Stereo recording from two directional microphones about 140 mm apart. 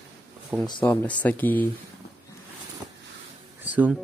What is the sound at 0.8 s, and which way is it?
Speech, 10° left (ahead or behind).